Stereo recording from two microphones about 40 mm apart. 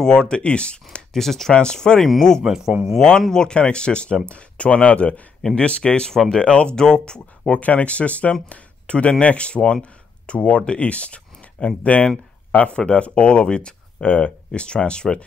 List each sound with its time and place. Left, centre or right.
0.0 s speech: centre
1.1 s speech: centre
1.5 s speech: centre
2.4 s speech: centre
3.0 s speech: centre
7.6 s speech: left